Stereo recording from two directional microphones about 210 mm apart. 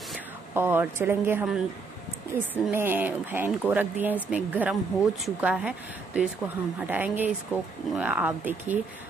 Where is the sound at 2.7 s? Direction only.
10° right (ahead or behind).